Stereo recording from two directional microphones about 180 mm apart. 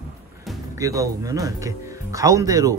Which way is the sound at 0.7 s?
20° right (ahead or behind).